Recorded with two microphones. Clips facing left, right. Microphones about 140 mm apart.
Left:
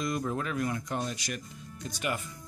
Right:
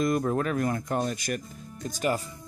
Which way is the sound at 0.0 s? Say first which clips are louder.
Right 6 dB; 50° right (ahead or behind).